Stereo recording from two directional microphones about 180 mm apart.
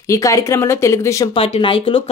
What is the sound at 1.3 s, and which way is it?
Speech, 30° left (ahead or behind).